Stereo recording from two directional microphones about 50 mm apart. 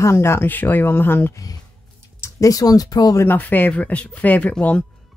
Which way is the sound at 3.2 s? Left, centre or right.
Left.